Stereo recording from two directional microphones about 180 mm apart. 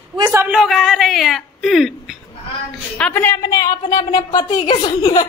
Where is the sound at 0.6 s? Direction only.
Centre (ahead or behind).